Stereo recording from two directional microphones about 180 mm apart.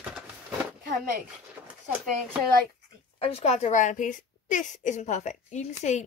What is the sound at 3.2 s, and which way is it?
A woman's voice, 35° left (ahead or behind).